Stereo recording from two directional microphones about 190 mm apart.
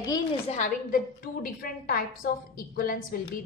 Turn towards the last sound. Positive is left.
turn(degrees=50)  # may be behind; listen again after turning